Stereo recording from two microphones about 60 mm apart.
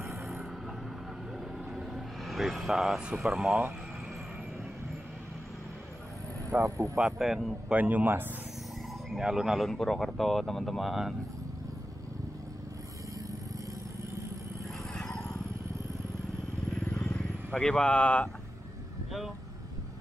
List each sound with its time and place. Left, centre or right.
1.7 s vehicle: centre
3.3 s speech: centre
6.5 s speech: right
7.0 s speech: centre
7.7 s speech: right
9.2 s speech: centre
9.7 s speech: centre
17.0 s vehicle: centre